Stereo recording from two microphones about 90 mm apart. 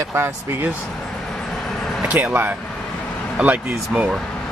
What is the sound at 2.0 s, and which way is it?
Speech, 15° right (ahead or behind).